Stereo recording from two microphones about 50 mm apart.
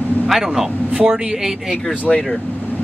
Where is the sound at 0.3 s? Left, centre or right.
Centre.